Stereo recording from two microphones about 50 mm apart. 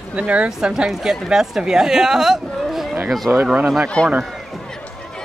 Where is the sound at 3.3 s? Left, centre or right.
Right.